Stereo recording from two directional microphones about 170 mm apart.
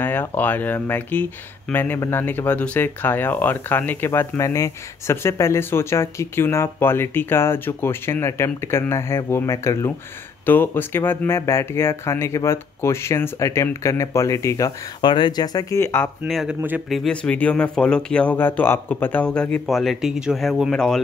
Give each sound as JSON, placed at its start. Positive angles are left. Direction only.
{"t": 0.0, "sound": "speech", "side_deg": 10}
{"t": 16.3, "sound": "speech", "side_deg": 0}
{"t": 17.0, "sound": "speech", "side_deg": 5}